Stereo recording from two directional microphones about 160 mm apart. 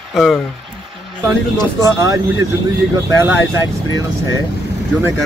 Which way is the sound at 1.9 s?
20° right (ahead or behind).